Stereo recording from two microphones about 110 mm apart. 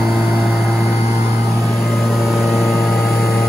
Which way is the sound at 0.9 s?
30° right (ahead or behind).